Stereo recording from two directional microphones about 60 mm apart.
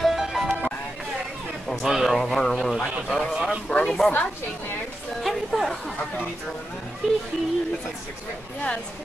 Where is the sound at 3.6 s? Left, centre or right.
Centre.